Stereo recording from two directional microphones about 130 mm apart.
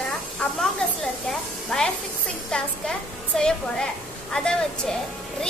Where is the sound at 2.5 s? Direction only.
5° left (ahead or behind).